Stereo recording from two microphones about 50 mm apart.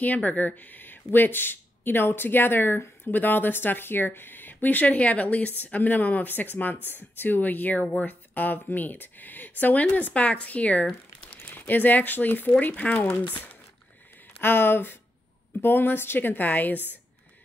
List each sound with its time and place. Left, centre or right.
0.0 s speech: left
14.4 s speech: left